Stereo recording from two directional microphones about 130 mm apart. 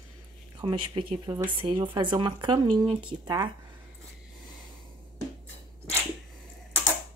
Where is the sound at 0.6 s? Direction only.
40° right (ahead or behind).